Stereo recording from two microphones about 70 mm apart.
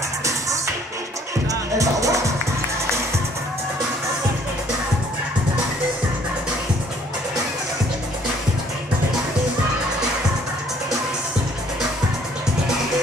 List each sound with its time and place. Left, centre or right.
0.2 s music: right